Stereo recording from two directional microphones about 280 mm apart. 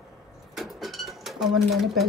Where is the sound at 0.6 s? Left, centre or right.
Centre.